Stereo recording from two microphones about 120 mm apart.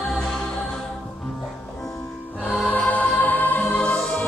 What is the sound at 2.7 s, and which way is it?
Music, 10° left (ahead or behind).